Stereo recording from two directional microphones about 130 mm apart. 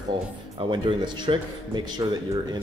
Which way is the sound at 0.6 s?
40° right (ahead or behind).